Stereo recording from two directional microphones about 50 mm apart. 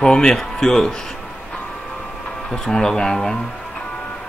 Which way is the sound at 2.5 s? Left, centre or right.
Centre.